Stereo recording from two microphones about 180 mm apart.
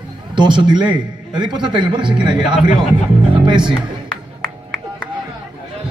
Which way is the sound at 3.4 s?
25° right (ahead or behind).